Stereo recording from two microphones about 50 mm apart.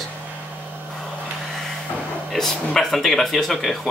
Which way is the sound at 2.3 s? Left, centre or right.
Centre.